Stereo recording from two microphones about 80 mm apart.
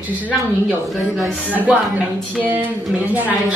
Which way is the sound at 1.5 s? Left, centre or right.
Centre.